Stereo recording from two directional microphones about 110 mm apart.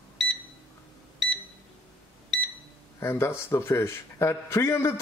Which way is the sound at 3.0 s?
20° left (ahead or behind).